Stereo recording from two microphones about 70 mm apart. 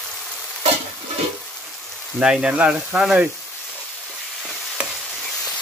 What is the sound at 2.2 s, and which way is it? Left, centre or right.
Speech, centre.